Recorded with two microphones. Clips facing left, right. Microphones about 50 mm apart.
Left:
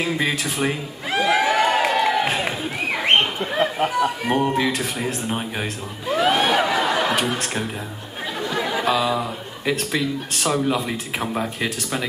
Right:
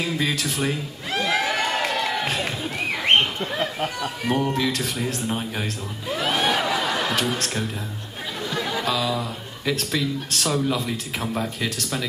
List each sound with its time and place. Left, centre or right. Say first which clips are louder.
0.0 s a sound: left 2 dB; left
2.6 s speech: left 2 dB; centre
4.3 s a man's voice: left 3 dB; left